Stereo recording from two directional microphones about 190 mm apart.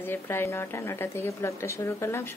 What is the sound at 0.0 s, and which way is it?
A woman's voice, 10° left (ahead or behind).